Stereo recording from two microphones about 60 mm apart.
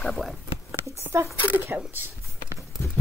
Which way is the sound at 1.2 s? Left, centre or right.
Right.